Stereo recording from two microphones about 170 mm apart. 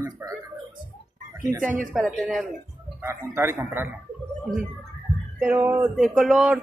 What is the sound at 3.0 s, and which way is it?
Speech, 15° right (ahead or behind).